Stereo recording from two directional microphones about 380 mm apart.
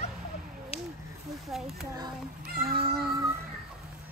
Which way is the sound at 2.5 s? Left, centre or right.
Right.